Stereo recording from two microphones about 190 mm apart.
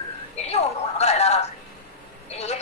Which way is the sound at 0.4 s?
35° left (ahead or behind).